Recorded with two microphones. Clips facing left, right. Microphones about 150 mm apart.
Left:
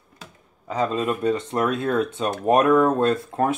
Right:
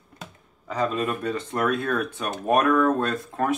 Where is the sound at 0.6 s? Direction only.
15° left (ahead or behind).